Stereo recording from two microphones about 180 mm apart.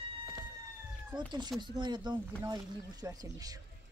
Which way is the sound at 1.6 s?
25° right (ahead or behind).